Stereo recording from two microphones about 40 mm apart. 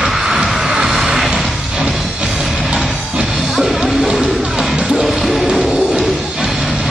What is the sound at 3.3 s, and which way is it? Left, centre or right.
Music, centre.